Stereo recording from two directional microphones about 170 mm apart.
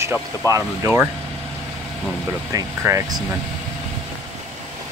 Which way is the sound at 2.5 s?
20° right (ahead or behind).